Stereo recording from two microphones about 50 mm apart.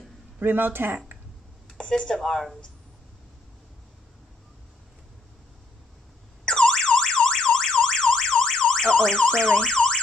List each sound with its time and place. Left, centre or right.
0.4 s speech: right
1.8 s speech: centre
6.4 s car alarm: centre